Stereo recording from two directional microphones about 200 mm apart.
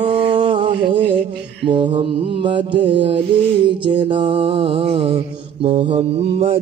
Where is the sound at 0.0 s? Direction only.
25° right (ahead or behind).